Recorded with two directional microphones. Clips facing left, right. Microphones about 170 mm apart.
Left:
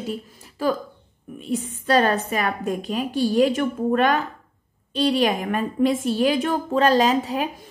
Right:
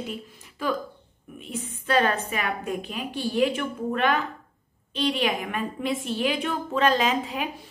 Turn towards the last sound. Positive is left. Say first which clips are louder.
# left 5 dB
turn(degrees=40)  # may be behind; listen again after turning